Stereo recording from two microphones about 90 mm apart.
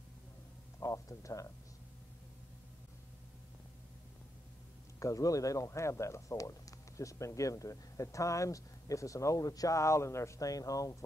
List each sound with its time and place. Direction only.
0.7 s music: 35° left (ahead or behind)
5.0 s speech: 40° left (ahead or behind)